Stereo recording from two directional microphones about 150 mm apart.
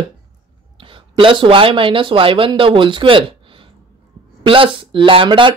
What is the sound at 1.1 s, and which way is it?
Speech, 35° right (ahead or behind).